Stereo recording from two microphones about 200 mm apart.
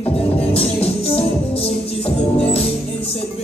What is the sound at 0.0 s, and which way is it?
Music, 30° left (ahead or behind).